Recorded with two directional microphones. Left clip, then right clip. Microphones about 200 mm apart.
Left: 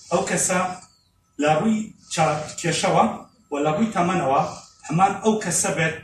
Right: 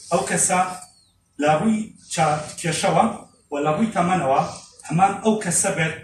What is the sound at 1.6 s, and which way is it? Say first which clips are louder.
A man's voice: left 1 dB; 15° left (ahead or behind).